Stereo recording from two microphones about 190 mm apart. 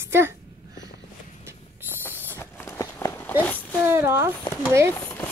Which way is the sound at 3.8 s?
15° right (ahead or behind).